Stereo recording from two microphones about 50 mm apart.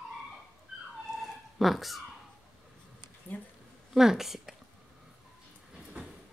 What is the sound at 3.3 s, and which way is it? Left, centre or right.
Speech, left.